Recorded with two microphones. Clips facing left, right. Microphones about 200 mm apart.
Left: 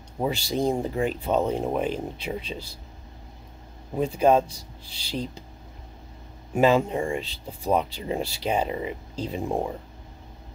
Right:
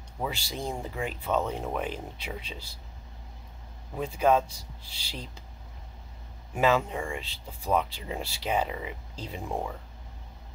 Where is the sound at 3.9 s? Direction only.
30° left (ahead or behind).